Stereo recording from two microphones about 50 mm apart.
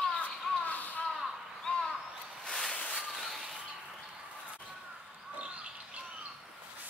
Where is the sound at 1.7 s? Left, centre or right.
Left; by 3.5 s centre.